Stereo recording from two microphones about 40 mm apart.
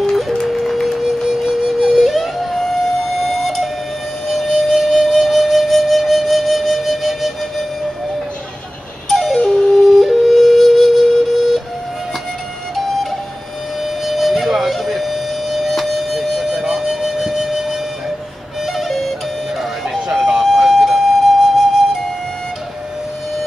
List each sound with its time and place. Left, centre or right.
0.3 s music: centre
0.7 s music: centre
1.2 s music: centre
4.3 s flute: centre
9.1 s music: centre
9.5 s flute: centre
13.7 s a sound: centre
18.6 s music: centre